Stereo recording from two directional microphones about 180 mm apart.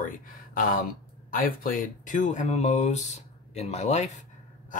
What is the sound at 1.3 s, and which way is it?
Speech, 50° left (ahead or behind).